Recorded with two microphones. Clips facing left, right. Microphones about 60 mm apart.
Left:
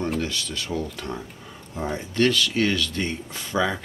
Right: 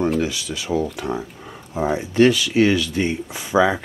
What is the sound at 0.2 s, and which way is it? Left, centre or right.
Speech, centre.